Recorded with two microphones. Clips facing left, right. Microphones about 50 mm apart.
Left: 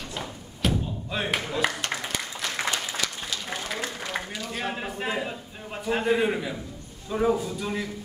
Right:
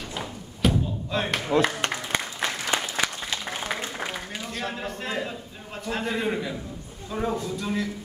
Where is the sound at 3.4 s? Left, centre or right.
Right.